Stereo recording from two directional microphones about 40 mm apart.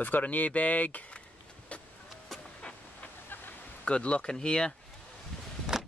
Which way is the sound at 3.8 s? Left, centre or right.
Left.